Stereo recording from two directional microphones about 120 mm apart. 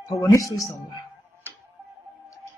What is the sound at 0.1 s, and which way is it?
Speech, 30° left (ahead or behind).